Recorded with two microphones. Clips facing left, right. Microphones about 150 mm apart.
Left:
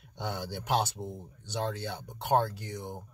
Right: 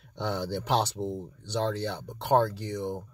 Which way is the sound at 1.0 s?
20° right (ahead or behind).